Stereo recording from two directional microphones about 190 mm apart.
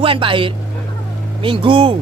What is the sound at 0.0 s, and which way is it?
Speech, 25° right (ahead or behind).